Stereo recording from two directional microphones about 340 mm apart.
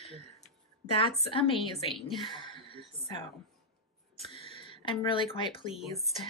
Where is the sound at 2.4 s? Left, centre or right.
Centre.